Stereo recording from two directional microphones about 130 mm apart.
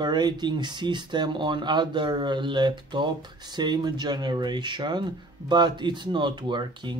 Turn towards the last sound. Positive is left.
turn(degrees=-35)  # may be behind; listen again after turning